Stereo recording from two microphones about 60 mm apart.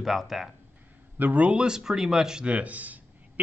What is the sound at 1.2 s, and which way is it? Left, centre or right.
Speech, right.